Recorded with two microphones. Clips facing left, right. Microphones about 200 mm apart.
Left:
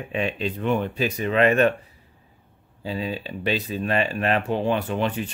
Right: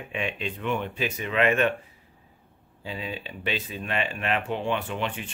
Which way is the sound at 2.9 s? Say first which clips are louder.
Left 6 dB; 40° left (ahead or behind).